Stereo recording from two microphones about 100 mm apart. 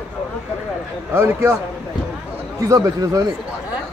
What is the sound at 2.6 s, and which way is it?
Speech, 35° right (ahead or behind).